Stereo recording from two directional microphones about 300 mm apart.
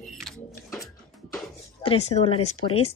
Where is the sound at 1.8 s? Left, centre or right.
Centre.